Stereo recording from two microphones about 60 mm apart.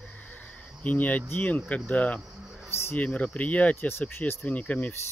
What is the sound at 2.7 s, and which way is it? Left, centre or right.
Speech, left.